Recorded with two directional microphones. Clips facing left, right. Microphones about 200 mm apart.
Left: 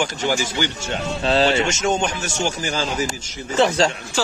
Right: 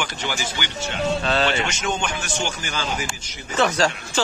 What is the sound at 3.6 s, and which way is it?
Speech, 25° left (ahead or behind).